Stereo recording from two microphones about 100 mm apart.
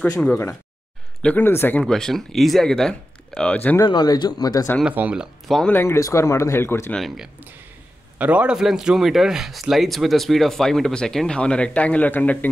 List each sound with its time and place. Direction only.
1.2 s speech: 20° left (ahead or behind)
1.9 s speech: 5° left (ahead or behind)
3.8 s speech: 45° left (ahead or behind)
4.8 s speech: 10° right (ahead or behind)
5.7 s speech: 25° left (ahead or behind)
6.9 s speech: centre (ahead or behind)
8.2 s speech: 15° right (ahead or behind); by 12.4 s 15° left (ahead or behind)